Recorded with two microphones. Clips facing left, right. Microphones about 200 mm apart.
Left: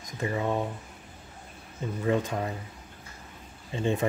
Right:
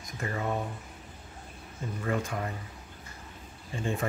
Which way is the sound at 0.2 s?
20° left (ahead or behind).